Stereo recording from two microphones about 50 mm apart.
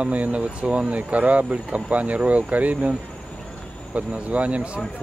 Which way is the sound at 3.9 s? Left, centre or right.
Right.